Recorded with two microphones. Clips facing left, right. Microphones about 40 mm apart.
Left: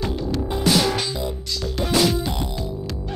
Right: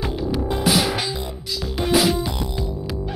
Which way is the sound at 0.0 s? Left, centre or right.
Centre.